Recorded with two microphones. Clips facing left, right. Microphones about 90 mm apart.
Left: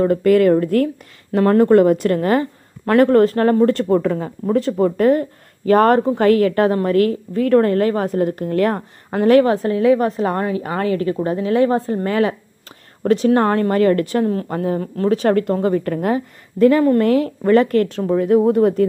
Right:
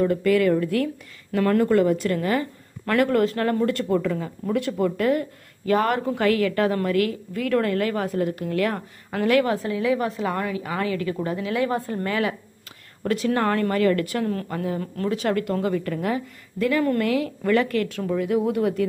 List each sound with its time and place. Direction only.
0.0 s a woman's voice: 45° left (ahead or behind)